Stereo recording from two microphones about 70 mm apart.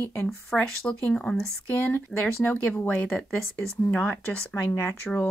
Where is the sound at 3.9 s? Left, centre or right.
Left.